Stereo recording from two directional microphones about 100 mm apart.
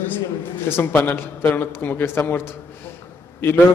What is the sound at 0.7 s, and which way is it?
A man's voice, 20° left (ahead or behind).